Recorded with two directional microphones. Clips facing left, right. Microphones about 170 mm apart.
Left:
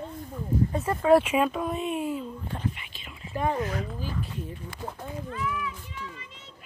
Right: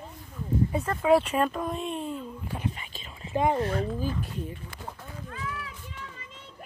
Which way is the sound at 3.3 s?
20° right (ahead or behind).